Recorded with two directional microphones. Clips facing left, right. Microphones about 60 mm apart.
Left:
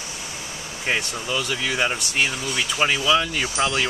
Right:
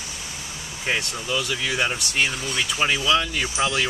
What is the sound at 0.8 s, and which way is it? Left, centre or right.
Speech, centre.